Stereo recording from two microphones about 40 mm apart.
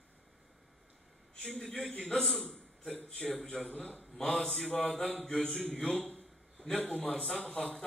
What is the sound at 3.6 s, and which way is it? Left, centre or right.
Speech, left.